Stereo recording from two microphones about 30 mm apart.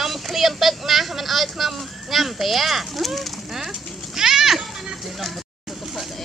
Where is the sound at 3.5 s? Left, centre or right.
Centre.